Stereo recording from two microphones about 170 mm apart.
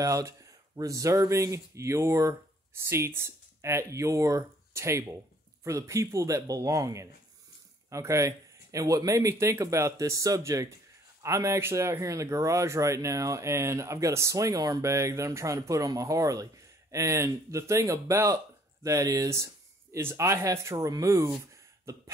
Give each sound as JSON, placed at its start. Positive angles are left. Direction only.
{"t": 0.0, "sound": "speech", "side_deg": -20}